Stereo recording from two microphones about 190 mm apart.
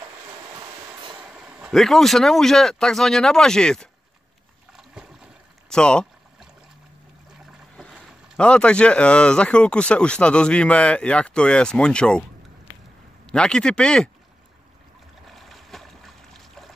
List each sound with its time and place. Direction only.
1.2 s speech: 5° right (ahead or behind)
4.7 s boat: 5° right (ahead or behind)
7.3 s speech: centre (ahead or behind)
13.3 s speech: 5° left (ahead or behind)
15.2 s a sound: centre (ahead or behind)